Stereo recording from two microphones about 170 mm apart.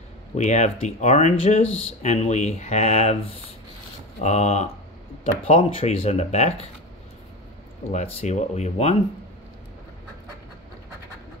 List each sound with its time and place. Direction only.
0.3 s speech: 40° left (ahead or behind)
4.2 s speech: 40° left (ahead or behind)
7.9 s speech: 40° left (ahead or behind)